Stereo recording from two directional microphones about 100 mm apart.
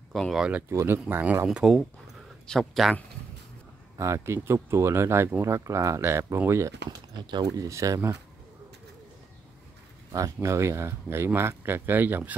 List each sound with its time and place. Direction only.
0.1 s speech: centre (ahead or behind)
0.7 s speech: 25° right (ahead or behind)
1.0 s speech: 15° right (ahead or behind)
2.4 s speech: 5° left (ahead or behind)
4.0 s speech: 30° right (ahead or behind)
7.2 s speech: 45° right (ahead or behind)
7.6 s speech: 35° right (ahead or behind)
10.1 s speech: 30° right (ahead or behind)